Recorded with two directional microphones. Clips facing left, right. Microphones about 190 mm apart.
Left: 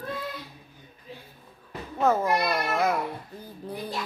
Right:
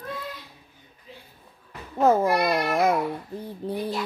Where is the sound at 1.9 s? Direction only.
30° right (ahead or behind).